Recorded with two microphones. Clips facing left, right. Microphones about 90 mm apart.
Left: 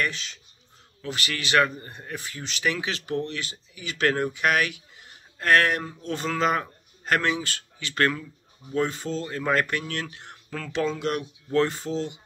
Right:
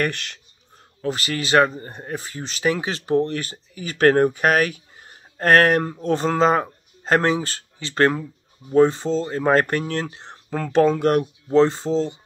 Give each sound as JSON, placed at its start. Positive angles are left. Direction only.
{"t": 0.0, "sound": "speech", "side_deg": -60}
{"t": 1.0, "sound": "speech", "side_deg": -35}
{"t": 10.7, "sound": "speech", "side_deg": -45}
{"t": 11.5, "sound": "speech", "side_deg": -30}